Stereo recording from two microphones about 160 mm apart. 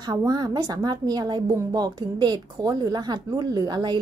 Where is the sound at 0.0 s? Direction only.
25° right (ahead or behind).